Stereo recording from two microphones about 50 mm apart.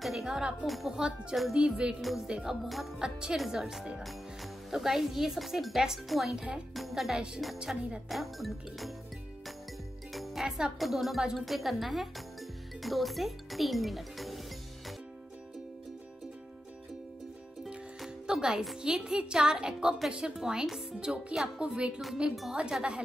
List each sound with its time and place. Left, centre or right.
0.0 s speech: centre
0.7 s speech: centre
1.5 s a woman's voice: centre
2.6 s speech: centre
3.0 s a woman's voice: centre
6.7 s speech: centre
7.5 s speech: centre
8.1 s speech: centre
10.1 s music: centre
10.8 s speech: centre
18.2 s music: centre
18.8 s a woman's voice: centre